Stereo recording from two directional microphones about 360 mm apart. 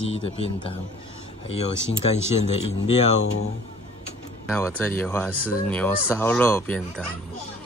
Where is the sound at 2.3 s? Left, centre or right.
Centre.